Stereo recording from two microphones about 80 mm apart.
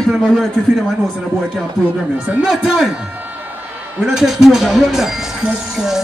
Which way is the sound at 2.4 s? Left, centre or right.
Centre.